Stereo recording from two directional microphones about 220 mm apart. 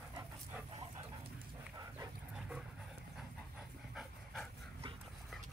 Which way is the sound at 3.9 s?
Centre (ahead or behind).